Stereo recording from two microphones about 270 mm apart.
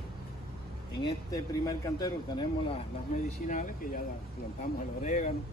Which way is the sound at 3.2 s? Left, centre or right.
Left.